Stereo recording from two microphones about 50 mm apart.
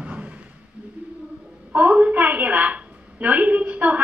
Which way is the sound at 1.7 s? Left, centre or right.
Right.